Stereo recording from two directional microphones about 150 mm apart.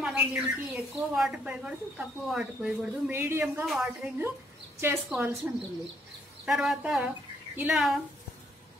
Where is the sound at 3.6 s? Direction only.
Centre (ahead or behind).